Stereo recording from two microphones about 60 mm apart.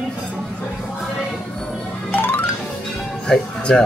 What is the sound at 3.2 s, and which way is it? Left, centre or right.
Music, centre.